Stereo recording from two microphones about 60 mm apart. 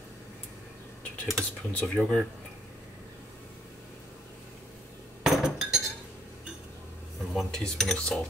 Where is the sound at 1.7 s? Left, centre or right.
Centre.